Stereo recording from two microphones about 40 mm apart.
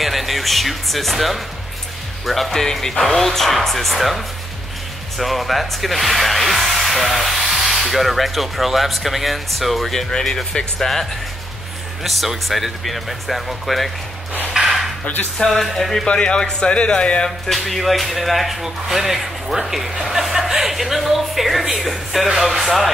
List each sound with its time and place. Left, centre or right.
0.0 s speech: centre
9.9 s speech: centre
12.0 s speech: centre
14.5 s a sound: centre
15.3 s speech: centre
16.1 s speech: left
17.5 s speech: centre